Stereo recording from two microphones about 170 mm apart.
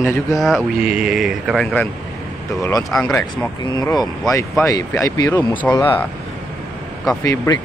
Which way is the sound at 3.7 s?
25° left (ahead or behind).